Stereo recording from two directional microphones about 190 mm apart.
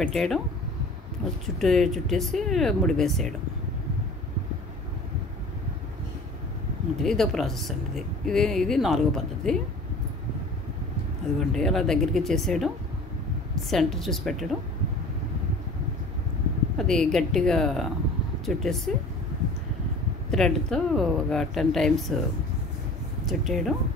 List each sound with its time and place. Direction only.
0.0 s a woman's voice: centre (ahead or behind)
1.6 s a woman's voice: centre (ahead or behind)
7.0 s a woman's voice: centre (ahead or behind)
11.3 s a woman's voice: centre (ahead or behind)
16.7 s a woman's voice: centre (ahead or behind)
20.2 s a woman's voice: 5° left (ahead or behind)
23.2 s a woman's voice: centre (ahead or behind)